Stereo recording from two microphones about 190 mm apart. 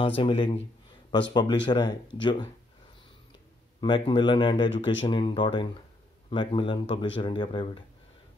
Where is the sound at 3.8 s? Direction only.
25° left (ahead or behind).